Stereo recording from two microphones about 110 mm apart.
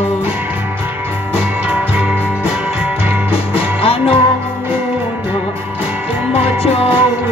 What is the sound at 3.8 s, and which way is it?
Music, 60° left (ahead or behind).